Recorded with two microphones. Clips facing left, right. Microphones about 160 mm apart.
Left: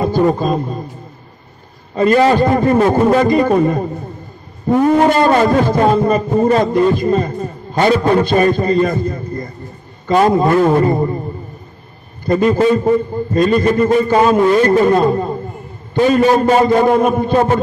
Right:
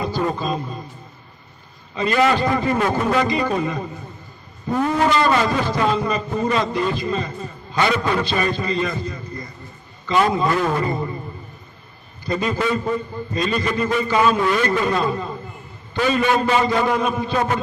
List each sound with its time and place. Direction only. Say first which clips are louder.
0.3 s a man's voice: left 8 dB; 45° left (ahead or behind)
2.0 s a man's voice: left 7 dB; 40° left (ahead or behind)
12.3 s a man's voice: left 9 dB; 50° left (ahead or behind); by 14.7 s 35° left (ahead or behind)
14.7 s a man's voice: left 9 dB; 45° left (ahead or behind)